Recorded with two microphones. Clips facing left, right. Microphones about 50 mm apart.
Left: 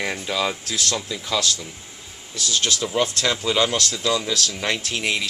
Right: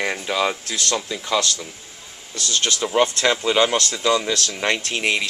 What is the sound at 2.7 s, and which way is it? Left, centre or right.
Speech, centre.